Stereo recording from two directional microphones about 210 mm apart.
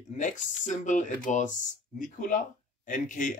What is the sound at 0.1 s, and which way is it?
Speech, 35° left (ahead or behind).